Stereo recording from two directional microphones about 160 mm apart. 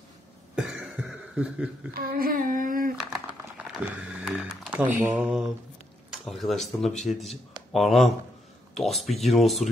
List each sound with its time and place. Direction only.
0.6 s cough: 5° right (ahead or behind)
2.0 s child singing: 70° right (ahead or behind)
3.5 s speech: 10° right (ahead or behind)